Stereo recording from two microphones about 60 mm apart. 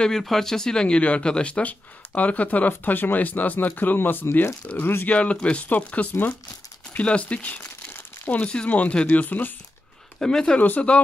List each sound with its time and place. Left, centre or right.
0.0 s speech: centre; by 5.1 s left
5.1 s speech: centre
10.2 s speech: centre
10.6 s speech: left